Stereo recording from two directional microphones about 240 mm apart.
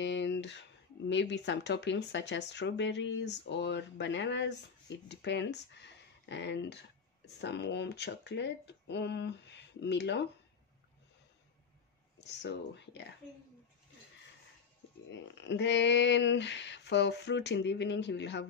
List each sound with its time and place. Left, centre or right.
0.0 s speech: left
12.2 s speech: left
15.0 s speech: left